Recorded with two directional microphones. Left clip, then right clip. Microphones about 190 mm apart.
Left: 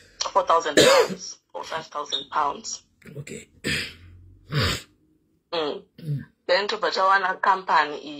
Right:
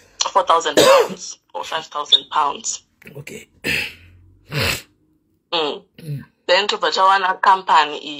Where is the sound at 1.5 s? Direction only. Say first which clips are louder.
Right 7 dB; 30° right (ahead or behind).